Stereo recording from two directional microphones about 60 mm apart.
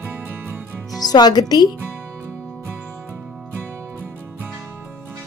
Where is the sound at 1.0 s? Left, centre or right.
Left.